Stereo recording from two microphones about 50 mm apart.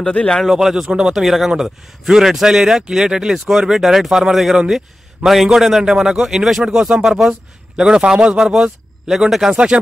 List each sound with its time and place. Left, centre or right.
0.0 s speech: centre
0.4 s speech: centre
6.6 s a man's voice: centre
9.1 s speech: centre
9.5 s speech: right